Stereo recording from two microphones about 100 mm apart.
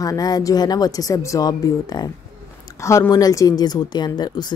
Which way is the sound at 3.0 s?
40° left (ahead or behind).